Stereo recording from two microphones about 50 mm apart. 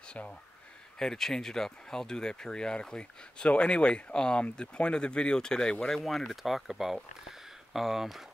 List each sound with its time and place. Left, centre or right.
0.1 s speech: left
0.9 s speech: centre
5.9 s speech: centre